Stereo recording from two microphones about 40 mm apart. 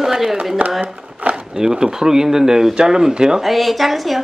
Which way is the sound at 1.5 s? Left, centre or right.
Centre.